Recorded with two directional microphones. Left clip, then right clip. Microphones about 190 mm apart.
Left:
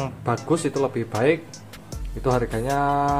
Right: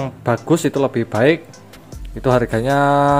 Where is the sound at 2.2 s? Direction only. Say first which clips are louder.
Right 7 dB; 35° right (ahead or behind).